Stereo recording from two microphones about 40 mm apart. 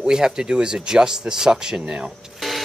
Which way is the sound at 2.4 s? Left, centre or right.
Centre.